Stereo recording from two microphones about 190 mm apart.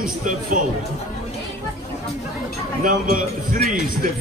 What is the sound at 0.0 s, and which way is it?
Speech, 45° right (ahead or behind).